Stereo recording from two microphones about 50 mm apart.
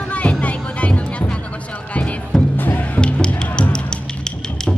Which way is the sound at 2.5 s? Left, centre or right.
Left.